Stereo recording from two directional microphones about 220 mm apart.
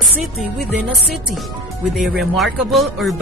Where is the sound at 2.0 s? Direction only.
Centre (ahead or behind).